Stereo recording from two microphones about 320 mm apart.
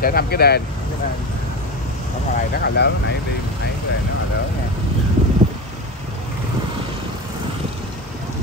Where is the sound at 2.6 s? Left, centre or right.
Left.